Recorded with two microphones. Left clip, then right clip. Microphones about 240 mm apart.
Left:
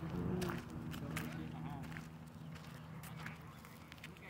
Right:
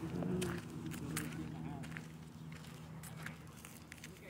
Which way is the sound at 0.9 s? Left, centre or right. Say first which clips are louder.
Right 1 dB; centre.